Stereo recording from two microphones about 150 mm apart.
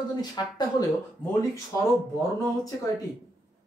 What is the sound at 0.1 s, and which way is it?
Speech, 25° left (ahead or behind).